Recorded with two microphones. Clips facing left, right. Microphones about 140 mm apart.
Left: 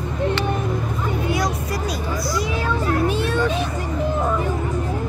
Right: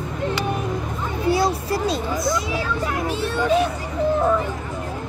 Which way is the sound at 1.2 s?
30° right (ahead or behind).